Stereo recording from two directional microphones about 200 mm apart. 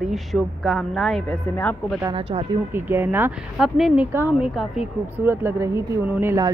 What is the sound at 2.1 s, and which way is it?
Speech, 25° right (ahead or behind).